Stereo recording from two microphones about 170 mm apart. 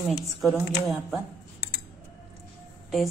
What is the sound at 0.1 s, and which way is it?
A woman's voice, centre (ahead or behind).